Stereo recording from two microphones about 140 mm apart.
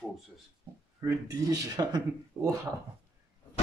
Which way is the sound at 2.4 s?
20° right (ahead or behind).